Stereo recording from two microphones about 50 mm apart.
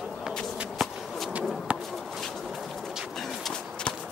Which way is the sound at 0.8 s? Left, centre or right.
Centre.